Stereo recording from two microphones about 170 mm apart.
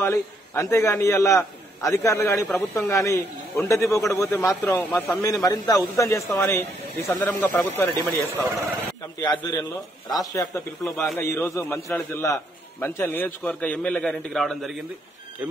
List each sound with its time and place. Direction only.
0.0 s a man's voice: 15° left (ahead or behind)
9.2 s a man's voice: 25° left (ahead or behind)
10.8 s a man's voice: 5° left (ahead or behind)
11.1 s a man's voice: 15° left (ahead or behind)